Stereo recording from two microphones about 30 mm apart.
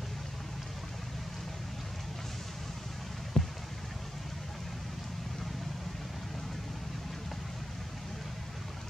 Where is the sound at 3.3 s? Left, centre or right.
Left.